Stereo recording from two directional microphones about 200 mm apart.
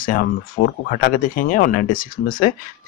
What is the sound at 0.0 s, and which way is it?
Speech, 45° left (ahead or behind).